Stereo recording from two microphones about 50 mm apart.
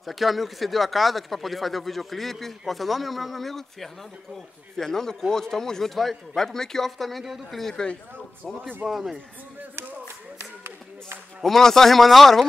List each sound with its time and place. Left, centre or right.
0.0 s speech: centre
7.7 s speech: centre
8.8 s speech: centre
11.4 s speech: centre